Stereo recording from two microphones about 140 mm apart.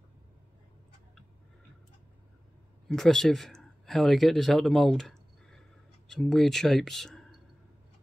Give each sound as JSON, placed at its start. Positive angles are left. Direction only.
{"t": 2.9, "sound": "speech", "side_deg": 5}